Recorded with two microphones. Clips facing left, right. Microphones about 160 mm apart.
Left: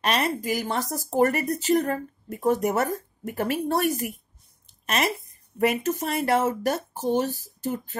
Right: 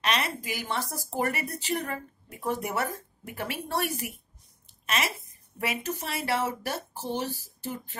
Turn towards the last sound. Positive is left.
turn(degrees=45)  # may be behind; listen again after turning